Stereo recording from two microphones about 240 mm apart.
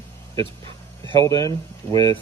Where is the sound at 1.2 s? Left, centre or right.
Centre.